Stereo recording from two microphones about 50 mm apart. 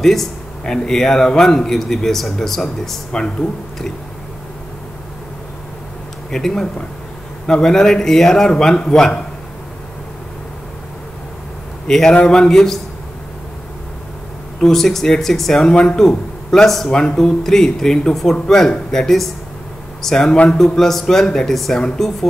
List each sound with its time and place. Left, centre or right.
0.0 s a man's voice: centre
3.1 s a man's voice: centre
6.3 s a man's voice: centre
11.9 s a man's voice: centre
14.6 s a man's voice: centre